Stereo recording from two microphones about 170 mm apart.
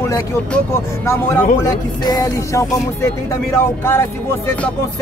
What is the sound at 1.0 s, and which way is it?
Speech, 15° left (ahead or behind).